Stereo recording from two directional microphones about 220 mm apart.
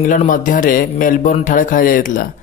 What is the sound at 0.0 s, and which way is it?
Speech, 35° left (ahead or behind).